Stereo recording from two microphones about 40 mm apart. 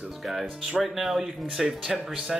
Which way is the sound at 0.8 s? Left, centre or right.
Centre.